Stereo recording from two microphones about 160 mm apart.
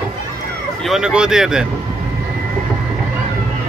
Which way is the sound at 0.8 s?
Centre (ahead or behind).